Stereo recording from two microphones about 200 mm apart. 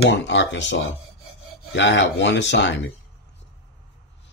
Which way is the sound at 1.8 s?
65° left (ahead or behind).